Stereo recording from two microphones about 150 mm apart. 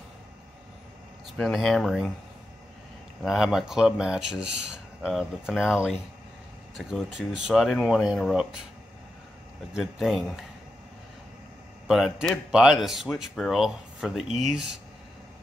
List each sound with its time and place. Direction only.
1.4 s speech: centre (ahead or behind)
3.3 s speech: centre (ahead or behind)
9.8 s speech: centre (ahead or behind)
11.9 s speech: centre (ahead or behind)